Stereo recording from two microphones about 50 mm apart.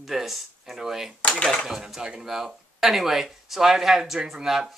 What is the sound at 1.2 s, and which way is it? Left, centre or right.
Speech, centre.